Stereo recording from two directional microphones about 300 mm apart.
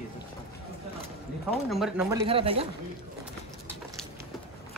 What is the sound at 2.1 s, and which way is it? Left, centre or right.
Speech, centre.